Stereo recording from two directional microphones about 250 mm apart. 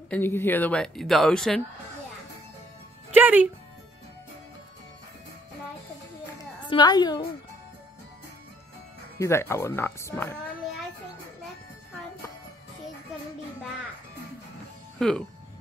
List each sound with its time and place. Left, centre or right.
0.1 s speech: centre
3.1 s speech: centre
6.3 s a sound: centre
9.2 s speech: centre
15.0 s speech: centre